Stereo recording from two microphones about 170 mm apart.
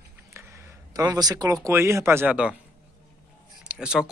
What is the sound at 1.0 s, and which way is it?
A man's voice, 25° right (ahead or behind).